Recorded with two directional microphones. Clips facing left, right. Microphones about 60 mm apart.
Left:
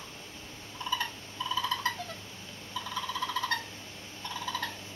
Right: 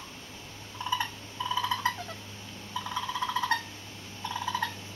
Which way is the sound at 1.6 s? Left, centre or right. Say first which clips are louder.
Right 2 dB; centre.